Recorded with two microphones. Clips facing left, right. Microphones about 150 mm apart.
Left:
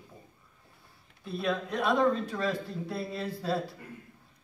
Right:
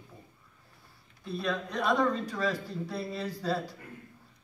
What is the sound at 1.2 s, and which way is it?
Speech, centre (ahead or behind).